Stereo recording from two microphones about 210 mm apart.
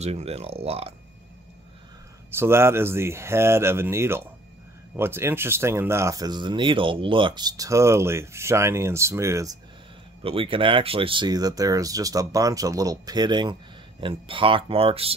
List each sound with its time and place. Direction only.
0.0 s speech: 30° right (ahead or behind)
2.3 s speech: 10° right (ahead or behind)
10.2 s speech: 25° right (ahead or behind)